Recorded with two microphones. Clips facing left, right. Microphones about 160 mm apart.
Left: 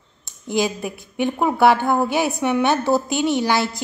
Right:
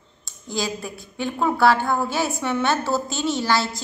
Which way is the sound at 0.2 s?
20° left (ahead or behind).